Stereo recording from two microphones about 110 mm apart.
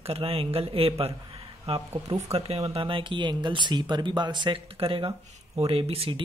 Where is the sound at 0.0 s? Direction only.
60° right (ahead or behind); by 4.6 s 45° right (ahead or behind).